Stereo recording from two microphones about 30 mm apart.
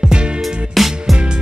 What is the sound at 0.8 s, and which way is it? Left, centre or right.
Music, centre.